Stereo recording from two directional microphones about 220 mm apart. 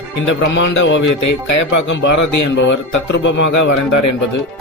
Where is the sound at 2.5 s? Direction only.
55° left (ahead or behind).